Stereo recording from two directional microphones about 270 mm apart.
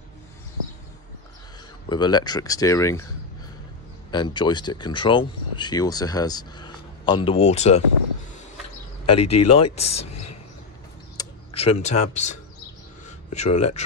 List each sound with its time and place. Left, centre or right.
1.9 s speech: centre
4.1 s speech: centre
9.0 s speech: left
9.9 s speech: left
11.1 s speech: left